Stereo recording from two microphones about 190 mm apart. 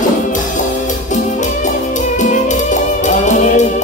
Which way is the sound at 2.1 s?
40° left (ahead or behind).